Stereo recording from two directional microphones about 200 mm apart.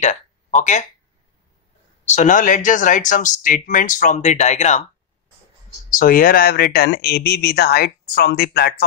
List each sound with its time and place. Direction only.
0.0 s speech: 35° left (ahead or behind)
2.0 s speech: 35° left (ahead or behind)
5.9 s speech: 45° left (ahead or behind)